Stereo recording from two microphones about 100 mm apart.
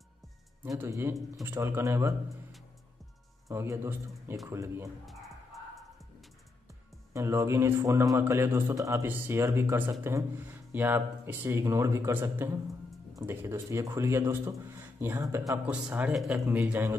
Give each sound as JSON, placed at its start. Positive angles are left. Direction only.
{"t": 0.7, "sound": "speech", "side_deg": -25}
{"t": 3.4, "sound": "speech", "side_deg": -30}
{"t": 5.0, "sound": "music", "side_deg": 0}
{"t": 7.2, "sound": "speech", "side_deg": -30}
{"t": 9.0, "sound": "speech", "side_deg": -20}
{"t": 15.7, "sound": "speech", "side_deg": -15}
{"t": 16.2, "sound": "speech", "side_deg": 0}